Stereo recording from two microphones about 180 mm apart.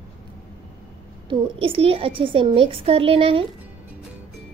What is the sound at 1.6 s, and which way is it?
A woman's voice, 30° right (ahead or behind).